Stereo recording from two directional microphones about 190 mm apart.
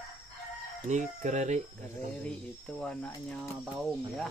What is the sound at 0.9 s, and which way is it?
Speech, 40° right (ahead or behind).